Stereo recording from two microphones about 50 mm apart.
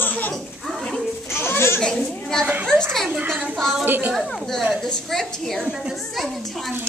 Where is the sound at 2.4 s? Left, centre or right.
Right.